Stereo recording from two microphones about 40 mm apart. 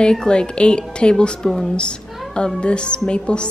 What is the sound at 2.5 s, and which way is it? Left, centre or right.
Speech, left.